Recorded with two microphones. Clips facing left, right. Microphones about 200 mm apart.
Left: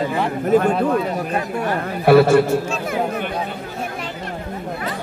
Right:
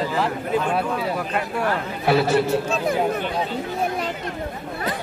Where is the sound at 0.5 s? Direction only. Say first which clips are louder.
Left 8 dB; 45° left (ahead or behind).